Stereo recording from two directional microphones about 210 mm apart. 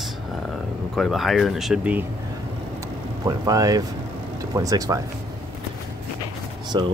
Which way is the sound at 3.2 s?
15° right (ahead or behind).